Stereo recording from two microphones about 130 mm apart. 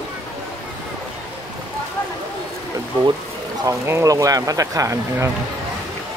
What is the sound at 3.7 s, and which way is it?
Speech, 20° right (ahead or behind).